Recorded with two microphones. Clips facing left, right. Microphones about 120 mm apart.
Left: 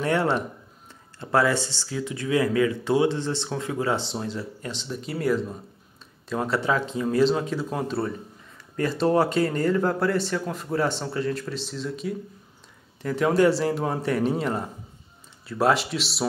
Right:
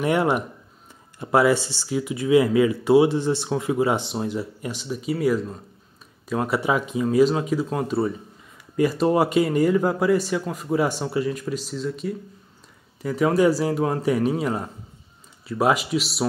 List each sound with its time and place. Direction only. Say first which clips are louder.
0.0 s speech: right 2 dB; 15° right (ahead or behind)